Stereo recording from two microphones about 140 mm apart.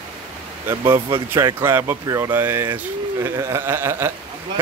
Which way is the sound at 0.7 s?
20° right (ahead or behind).